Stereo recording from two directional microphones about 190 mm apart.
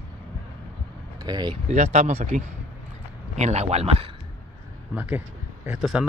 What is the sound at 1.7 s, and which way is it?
Speech, 40° right (ahead or behind).